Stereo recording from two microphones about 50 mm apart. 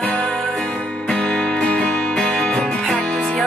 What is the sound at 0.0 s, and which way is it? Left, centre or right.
Music, left.